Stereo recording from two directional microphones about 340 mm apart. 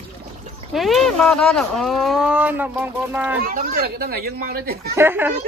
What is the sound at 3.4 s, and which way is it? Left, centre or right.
Speech, right.